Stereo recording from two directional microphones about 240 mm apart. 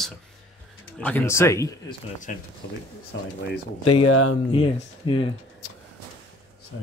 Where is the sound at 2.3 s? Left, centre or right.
Left.